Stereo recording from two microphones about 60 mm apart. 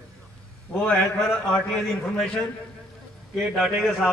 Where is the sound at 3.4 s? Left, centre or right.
Centre.